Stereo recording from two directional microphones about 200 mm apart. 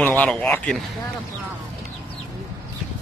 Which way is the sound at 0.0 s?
5° left (ahead or behind).